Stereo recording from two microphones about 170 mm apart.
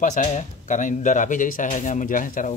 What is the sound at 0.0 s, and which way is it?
Speech, 45° left (ahead or behind).